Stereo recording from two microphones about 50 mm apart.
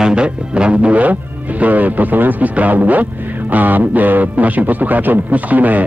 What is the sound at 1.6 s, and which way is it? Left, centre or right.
Speech, right.